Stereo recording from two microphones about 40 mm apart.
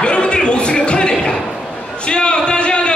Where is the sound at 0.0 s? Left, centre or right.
Left.